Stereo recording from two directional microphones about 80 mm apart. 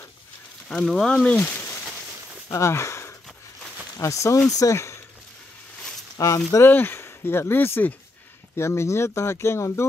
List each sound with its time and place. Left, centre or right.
0.8 s speech: centre
2.5 s speech: left
4.7 s a sound: left
6.1 s speech: left
6.6 s speech: left